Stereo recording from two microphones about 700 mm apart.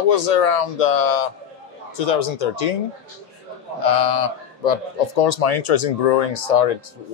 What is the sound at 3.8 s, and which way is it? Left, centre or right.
Speech, left.